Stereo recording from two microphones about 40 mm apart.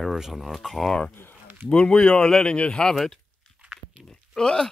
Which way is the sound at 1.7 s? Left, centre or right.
Left.